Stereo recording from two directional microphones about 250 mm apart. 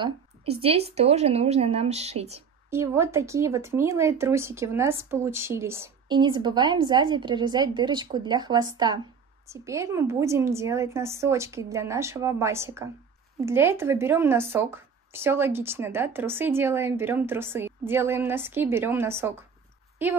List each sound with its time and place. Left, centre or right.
0.0 s a woman's voice: right
2.7 s speech: centre